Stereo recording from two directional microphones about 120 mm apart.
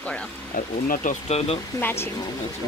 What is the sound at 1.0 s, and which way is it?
Speech, 60° left (ahead or behind).